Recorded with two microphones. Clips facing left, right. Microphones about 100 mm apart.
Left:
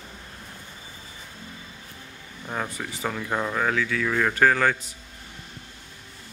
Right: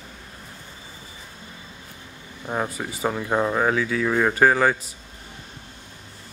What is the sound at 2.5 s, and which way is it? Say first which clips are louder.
Speech: right 4 dB; 20° right (ahead or behind).